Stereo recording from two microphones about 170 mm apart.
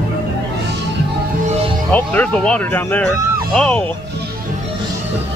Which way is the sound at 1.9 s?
10° left (ahead or behind).